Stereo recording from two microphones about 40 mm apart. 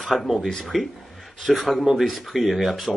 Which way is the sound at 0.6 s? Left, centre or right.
Centre.